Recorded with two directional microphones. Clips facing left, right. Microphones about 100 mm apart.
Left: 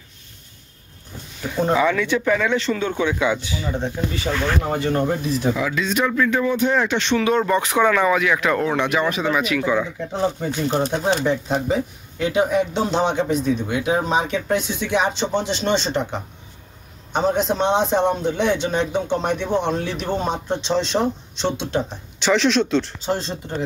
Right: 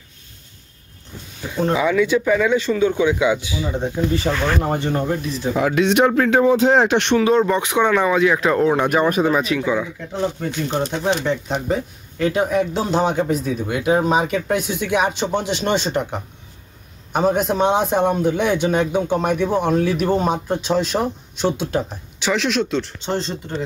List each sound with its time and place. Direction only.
1.5 s speech: centre (ahead or behind)
1.9 s a man's voice: 10° right (ahead or behind)
4.1 s speech: 35° right (ahead or behind)
4.9 s speech: centre (ahead or behind)
5.6 s speech: 55° right (ahead or behind)
6.5 s speech: 90° right
6.9 s speech: 60° right (ahead or behind)
7.2 s speech: 25° right (ahead or behind)
8.5 s a man's voice: 15° right (ahead or behind)
9.3 s speech: 35° right (ahead or behind)
10.4 s a man's voice: 5° left (ahead or behind)
23.0 s speech: 10° left (ahead or behind)